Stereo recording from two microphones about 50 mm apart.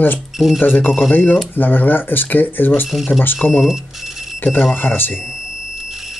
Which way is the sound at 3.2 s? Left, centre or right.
Left.